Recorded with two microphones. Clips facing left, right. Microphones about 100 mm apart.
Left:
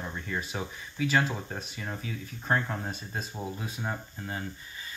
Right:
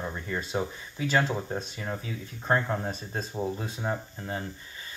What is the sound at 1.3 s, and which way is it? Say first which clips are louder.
Speech: right 5 dB; 20° right (ahead or behind).